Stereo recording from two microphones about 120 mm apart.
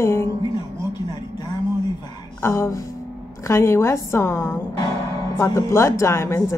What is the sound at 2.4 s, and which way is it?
Speech, 20° left (ahead or behind).